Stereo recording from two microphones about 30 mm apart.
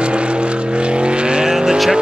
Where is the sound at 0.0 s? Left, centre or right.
Right.